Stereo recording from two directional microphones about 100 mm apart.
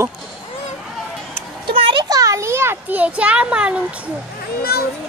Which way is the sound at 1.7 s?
55° right (ahead or behind).